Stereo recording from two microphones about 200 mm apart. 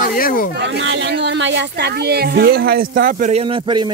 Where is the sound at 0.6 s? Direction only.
65° right (ahead or behind).